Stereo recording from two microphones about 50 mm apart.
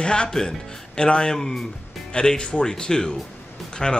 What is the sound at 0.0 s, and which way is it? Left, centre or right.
Speech, centre.